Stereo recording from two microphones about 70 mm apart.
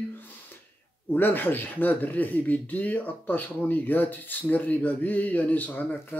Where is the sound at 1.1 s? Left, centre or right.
Left.